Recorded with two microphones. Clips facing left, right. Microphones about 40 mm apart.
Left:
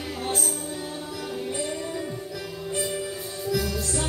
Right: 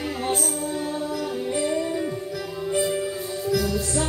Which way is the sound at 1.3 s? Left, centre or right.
Centre.